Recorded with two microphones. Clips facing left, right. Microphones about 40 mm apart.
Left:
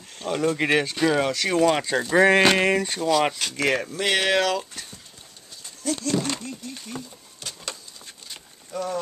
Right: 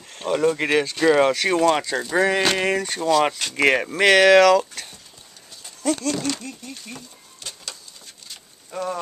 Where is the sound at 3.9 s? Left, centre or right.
Right.